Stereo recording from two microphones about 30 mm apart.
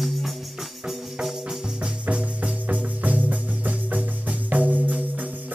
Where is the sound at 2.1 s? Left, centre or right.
Right.